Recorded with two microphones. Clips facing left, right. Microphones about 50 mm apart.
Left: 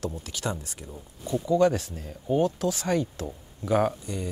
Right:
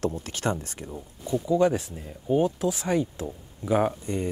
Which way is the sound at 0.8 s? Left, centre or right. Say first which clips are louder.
Right 2 dB; right.